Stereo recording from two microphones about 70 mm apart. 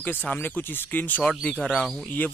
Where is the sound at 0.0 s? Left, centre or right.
Left.